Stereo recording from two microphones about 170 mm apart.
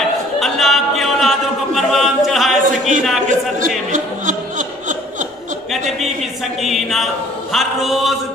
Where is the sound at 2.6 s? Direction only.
50° right (ahead or behind).